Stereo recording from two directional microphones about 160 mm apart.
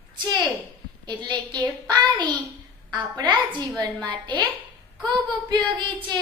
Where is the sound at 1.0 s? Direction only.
25° right (ahead or behind).